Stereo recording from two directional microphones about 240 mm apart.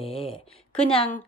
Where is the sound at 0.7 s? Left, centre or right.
Centre.